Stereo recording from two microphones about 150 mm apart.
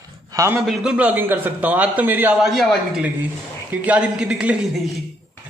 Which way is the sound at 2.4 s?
Centre (ahead or behind).